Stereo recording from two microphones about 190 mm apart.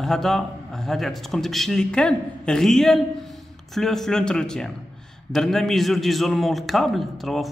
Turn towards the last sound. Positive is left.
turn(degrees=0)  # may be behind; listen again after turning